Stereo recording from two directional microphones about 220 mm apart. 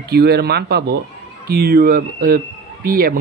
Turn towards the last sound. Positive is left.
turn(degrees=-40)  # may be behind; listen again after turning